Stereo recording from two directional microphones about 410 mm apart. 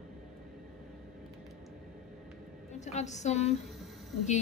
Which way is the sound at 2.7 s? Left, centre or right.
Centre.